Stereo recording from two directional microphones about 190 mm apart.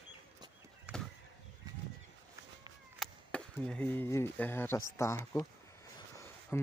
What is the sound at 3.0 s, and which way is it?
Speech, 5° left (ahead or behind).